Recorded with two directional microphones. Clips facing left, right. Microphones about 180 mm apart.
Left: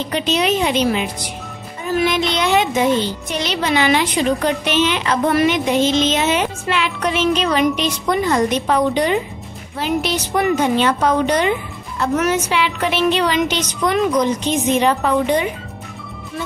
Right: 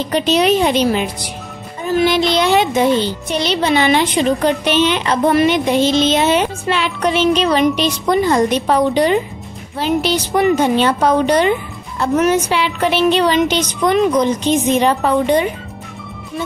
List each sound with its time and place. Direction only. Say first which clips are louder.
0.1 s a child's voice: right 5 dB; 40° right (ahead or behind)
2.0 s a child's voice: right 5 dB; 35° right (ahead or behind)